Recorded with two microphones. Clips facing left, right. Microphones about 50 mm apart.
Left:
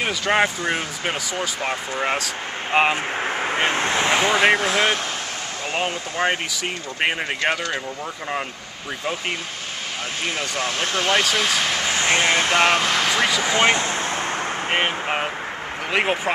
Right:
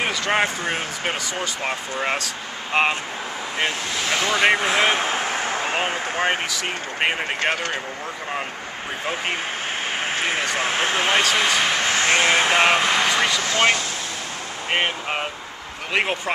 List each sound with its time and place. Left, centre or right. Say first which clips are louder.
0.2 s speech: left 3 dB; centre
2.7 s speech: left 2 dB; centre
3.3 s speech: left 3 dB; left
4.4 s speech: even; centre
4.9 s speech: right 5 dB; right
7.0 s speech: even; centre
10.2 s speech: even; right
11.9 s speech: even; right; by 13.4 s centre
13.4 s speech: left 1 dB; centre
14.7 s speech: right 1 dB; centre